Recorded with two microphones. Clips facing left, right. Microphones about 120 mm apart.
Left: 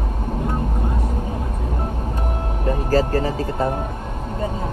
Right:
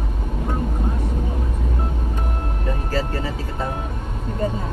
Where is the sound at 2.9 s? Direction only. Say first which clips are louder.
Left 7 dB; 45° left (ahead or behind).